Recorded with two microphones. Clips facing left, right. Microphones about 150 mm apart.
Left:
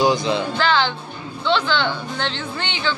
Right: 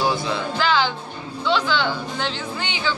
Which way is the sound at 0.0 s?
15° left (ahead or behind).